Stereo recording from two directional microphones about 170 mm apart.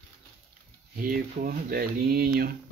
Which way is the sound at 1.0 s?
55° right (ahead or behind).